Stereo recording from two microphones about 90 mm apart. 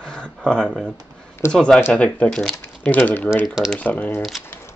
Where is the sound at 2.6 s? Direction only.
20° left (ahead or behind).